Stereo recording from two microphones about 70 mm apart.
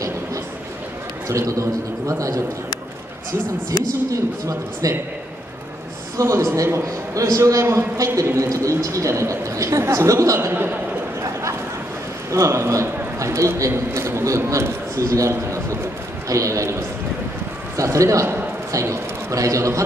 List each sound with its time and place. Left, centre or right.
1.3 s a man's voice: right
4.1 s a man's voice: right
6.1 s a man's voice: right
10.5 s a man's voice: right
12.3 s a man's voice: right
14.6 s a sound: right
16.3 s a man's voice: right
17.7 s a man's voice: right